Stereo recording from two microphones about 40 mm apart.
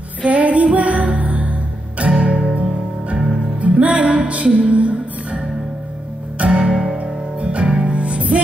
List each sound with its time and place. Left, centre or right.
0.2 s music: right